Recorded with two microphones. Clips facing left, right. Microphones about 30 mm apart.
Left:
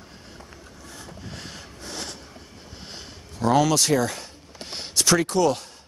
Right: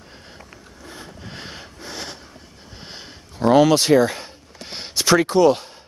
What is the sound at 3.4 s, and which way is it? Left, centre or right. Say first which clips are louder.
Speech: right 6 dB; right.